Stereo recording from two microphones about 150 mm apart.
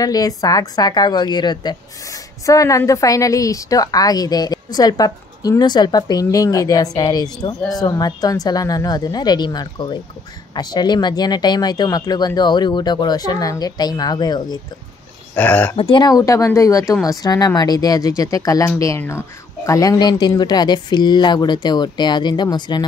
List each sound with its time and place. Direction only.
0.0 s a woman's voice: 25° left (ahead or behind)
15.3 s speech: 10° left (ahead or behind)
15.7 s a woman's voice: 30° left (ahead or behind)